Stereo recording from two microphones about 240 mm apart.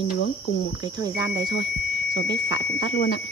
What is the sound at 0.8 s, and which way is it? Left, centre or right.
Speech, centre.